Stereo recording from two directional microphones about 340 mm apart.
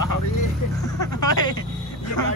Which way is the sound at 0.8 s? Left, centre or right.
Centre.